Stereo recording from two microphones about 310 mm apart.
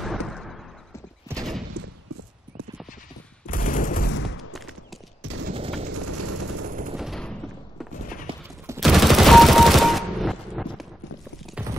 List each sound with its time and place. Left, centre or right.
0.0 s a sound: centre
1.3 s clip-clop: centre
1.8 s a sound: right
3.4 s fusillade: left
5.2 s fusillade: right
5.9 s vehicle: right
7.0 s machine gun: centre
8.3 s fusillade: centre
8.6 s fusillade: centre